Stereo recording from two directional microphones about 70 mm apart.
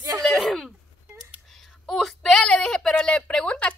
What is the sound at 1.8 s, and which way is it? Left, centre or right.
A woman's voice, centre.